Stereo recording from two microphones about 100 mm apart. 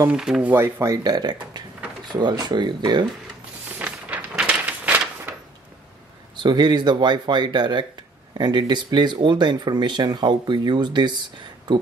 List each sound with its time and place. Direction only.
0.1 s speech: 10° right (ahead or behind)
0.5 s speech: 20° right (ahead or behind)
0.8 s speech: 35° right (ahead or behind)
3.8 s a sound: 15° right (ahead or behind)
6.3 s speech: 50° right (ahead or behind)